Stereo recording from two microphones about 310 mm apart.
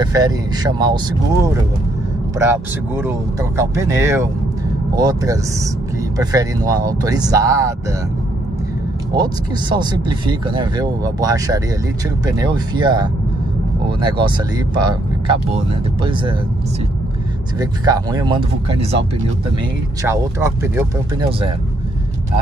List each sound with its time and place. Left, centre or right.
0.0 s speech: centre
2.3 s speech: centre
9.1 s speech: centre
17.6 s speech: centre
20.0 s speech: centre